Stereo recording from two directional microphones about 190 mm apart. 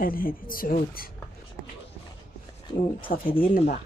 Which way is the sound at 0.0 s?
50° left (ahead or behind).